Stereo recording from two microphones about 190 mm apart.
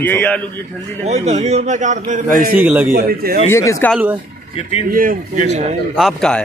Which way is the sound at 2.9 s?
55° right (ahead or behind).